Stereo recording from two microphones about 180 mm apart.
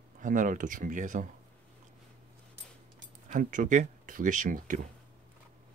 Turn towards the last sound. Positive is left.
turn(degrees=-45)  # may be behind; listen again after turning